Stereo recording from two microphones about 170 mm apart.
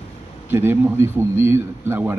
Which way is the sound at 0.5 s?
15° right (ahead or behind).